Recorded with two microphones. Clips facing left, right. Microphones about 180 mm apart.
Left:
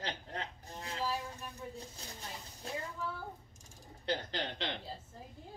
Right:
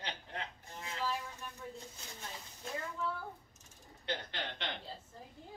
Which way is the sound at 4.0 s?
35° left (ahead or behind).